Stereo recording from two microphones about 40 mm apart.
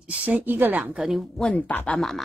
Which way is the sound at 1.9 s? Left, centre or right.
Centre.